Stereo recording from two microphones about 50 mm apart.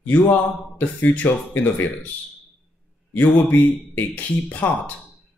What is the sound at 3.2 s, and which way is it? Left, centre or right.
Speech, left.